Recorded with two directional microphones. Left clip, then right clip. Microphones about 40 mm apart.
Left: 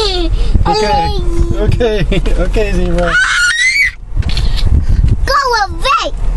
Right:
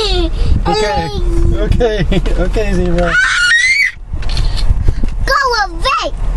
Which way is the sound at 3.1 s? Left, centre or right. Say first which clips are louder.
Even; left.